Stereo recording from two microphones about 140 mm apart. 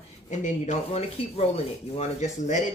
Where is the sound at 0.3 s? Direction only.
60° left (ahead or behind).